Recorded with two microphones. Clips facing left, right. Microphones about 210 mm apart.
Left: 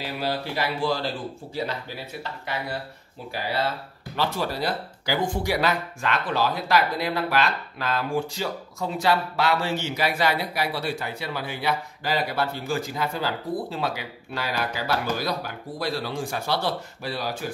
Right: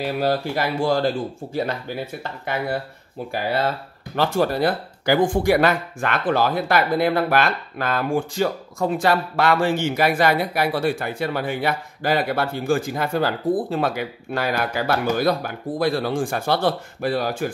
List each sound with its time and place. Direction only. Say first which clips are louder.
0.0 s speech: right 7 dB; 50° right (ahead or behind)